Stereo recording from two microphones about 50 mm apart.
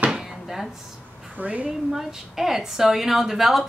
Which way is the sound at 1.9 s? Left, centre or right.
Centre.